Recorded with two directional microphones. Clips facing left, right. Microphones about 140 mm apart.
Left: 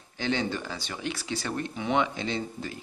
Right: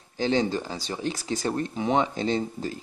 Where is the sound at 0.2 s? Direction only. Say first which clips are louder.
Right 5 dB; 35° right (ahead or behind).